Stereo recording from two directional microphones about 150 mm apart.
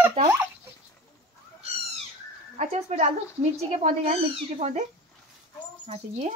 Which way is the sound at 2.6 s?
50° right (ahead or behind).